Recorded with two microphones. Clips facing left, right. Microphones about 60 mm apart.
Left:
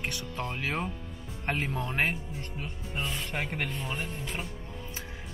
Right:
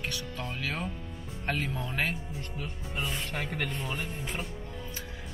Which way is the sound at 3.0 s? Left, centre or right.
Centre.